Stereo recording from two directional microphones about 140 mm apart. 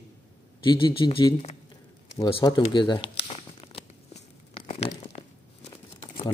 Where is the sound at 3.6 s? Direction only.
40° left (ahead or behind).